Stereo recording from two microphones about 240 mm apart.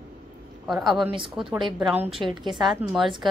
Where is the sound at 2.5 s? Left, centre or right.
Centre.